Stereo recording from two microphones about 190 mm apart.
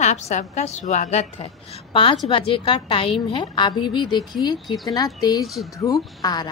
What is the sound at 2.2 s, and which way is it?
A woman's voice, 30° left (ahead or behind).